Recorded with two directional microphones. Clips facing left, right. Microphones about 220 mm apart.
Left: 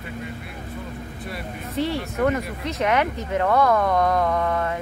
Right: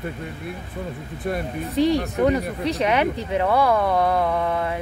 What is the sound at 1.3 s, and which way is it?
Speech, 50° right (ahead or behind).